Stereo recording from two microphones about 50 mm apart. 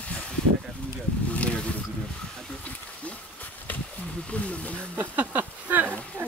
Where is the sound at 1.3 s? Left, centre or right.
Left.